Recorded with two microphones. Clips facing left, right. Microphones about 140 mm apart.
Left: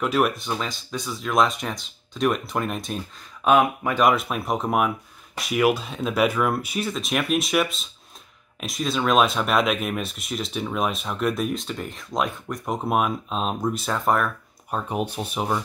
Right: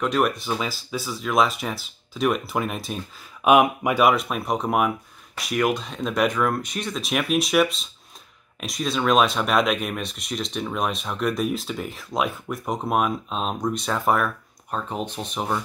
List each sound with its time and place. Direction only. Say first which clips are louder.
0.0 s speech: even; centre (ahead or behind)
3.4 s speech: right 2 dB; 15° right (ahead or behind)
4.1 s speech: even; centre (ahead or behind)
14.7 s speech: left 2 dB; 10° left (ahead or behind)